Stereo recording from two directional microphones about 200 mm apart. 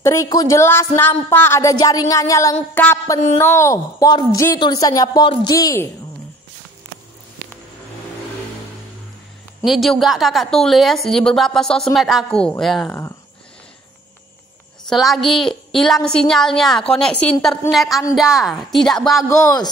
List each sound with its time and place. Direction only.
0.0 s a woman's voice: 15° left (ahead or behind)
9.7 s a woman's voice: centre (ahead or behind)
14.9 s a woman's voice: centre (ahead or behind)